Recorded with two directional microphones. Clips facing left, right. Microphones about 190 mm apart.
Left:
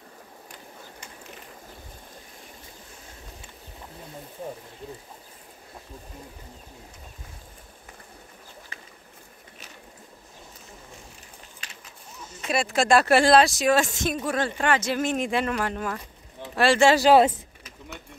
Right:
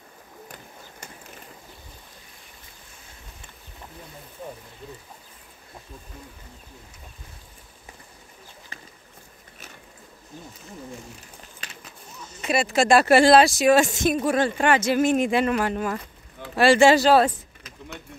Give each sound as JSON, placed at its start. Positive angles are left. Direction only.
{"t": 12.4, "sound": "speech", "side_deg": -5}
{"t": 17.0, "sound": "speech", "side_deg": 15}